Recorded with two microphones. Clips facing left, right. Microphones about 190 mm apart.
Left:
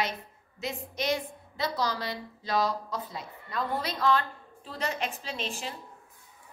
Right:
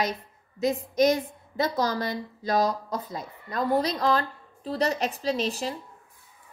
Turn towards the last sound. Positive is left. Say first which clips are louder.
# right 9 dB
turn(degrees=-40)  # may be behind; listen again after turning